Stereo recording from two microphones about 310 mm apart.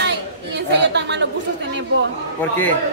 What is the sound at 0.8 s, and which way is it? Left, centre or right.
Chatter, right.